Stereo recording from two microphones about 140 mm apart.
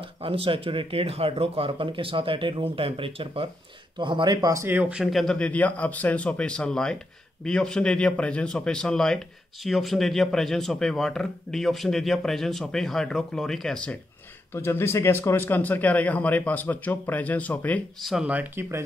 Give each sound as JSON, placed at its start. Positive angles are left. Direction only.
{"t": 0.2, "sound": "speech", "side_deg": -40}
{"t": 4.6, "sound": "a man's voice", "side_deg": -10}
{"t": 14.5, "sound": "speech", "side_deg": 15}
{"t": 18.0, "sound": "speech", "side_deg": -5}